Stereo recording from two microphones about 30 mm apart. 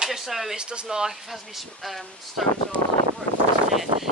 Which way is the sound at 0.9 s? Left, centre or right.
Centre.